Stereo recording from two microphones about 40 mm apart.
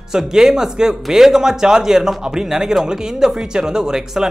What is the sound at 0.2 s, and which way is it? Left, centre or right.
A man's voice, centre.